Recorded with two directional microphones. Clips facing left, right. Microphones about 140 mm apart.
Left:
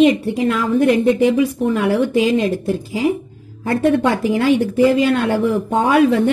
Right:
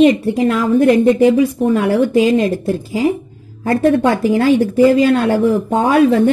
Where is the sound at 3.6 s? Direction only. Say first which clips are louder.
Right 2 dB; 40° right (ahead or behind).